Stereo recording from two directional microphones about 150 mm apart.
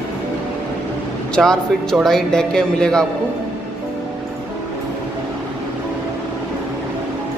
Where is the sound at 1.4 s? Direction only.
5° left (ahead or behind).